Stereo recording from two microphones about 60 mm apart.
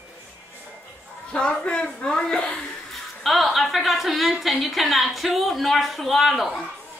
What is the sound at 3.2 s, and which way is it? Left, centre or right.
A woman's voice, centre.